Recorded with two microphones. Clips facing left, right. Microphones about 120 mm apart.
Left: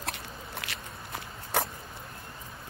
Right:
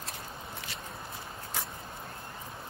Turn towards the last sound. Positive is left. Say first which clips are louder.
# left 7 dB
turn(degrees=70)  # may be behind; listen again after turning